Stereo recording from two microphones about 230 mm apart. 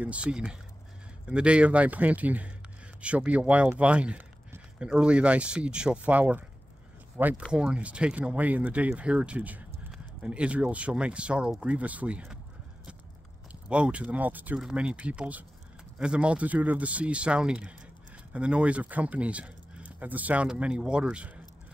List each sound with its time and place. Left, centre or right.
0.0 s speech: centre
13.5 s speech: centre